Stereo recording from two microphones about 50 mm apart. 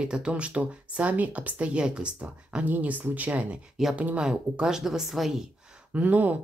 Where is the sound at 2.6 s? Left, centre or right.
Right.